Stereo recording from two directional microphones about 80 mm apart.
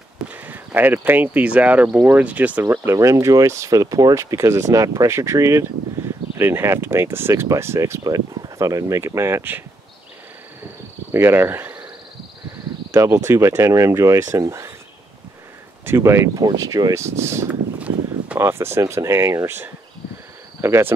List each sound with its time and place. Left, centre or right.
0.3 s speech: right
2.6 s speech: right
8.0 s speech: right
11.1 s speech: right
12.9 s speech: right
15.8 s speech: right
16.3 s speech: right
17.5 s a sound: centre
18.4 s speech: right